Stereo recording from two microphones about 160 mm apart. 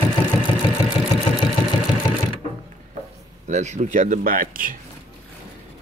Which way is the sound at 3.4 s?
45° right (ahead or behind).